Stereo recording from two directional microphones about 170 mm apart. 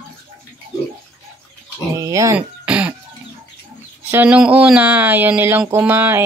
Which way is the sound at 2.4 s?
5° right (ahead or behind).